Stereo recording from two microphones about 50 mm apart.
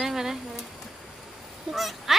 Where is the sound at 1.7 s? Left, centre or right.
Centre.